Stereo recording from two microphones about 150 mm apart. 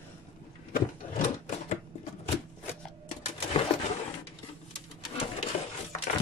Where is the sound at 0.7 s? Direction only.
65° left (ahead or behind).